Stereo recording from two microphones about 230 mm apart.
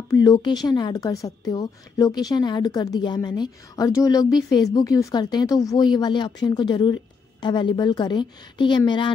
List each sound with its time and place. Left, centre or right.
0.1 s a woman's voice: centre